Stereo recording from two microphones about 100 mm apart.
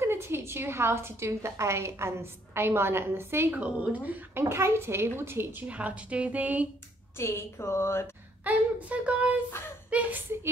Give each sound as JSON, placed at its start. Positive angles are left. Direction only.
{"t": 0.0, "sound": "a woman's voice", "side_deg": -25}
{"t": 7.2, "sound": "a woman's voice", "side_deg": 25}
{"t": 8.5, "sound": "a woman's voice", "side_deg": -15}